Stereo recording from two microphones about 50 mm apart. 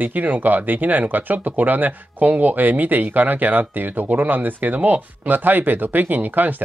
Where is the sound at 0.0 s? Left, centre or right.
Right.